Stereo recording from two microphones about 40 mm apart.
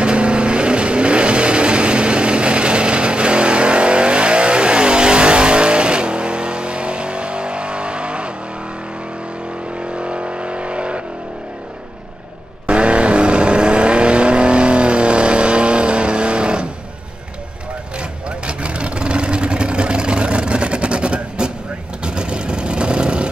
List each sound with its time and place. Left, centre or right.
0.0 s vehicle: right
9.8 s vehicle: right
12.6 s vehicle: right
17.9 s vehicle: right